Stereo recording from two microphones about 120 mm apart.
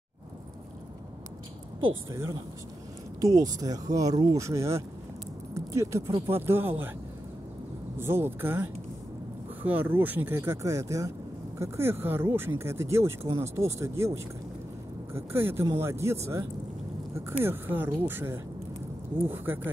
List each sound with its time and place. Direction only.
2.0 s speech: 25° right (ahead or behind)
8.0 s speech: 20° right (ahead or behind)